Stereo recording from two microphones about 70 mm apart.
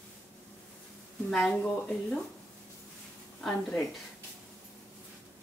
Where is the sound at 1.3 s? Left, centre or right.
Centre.